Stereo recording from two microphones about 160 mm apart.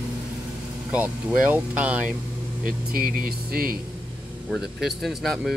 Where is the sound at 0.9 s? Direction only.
10° right (ahead or behind).